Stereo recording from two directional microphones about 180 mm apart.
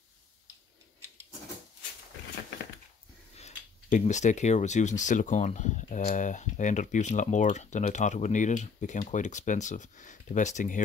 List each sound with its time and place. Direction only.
3.3 s speech: 35° left (ahead or behind)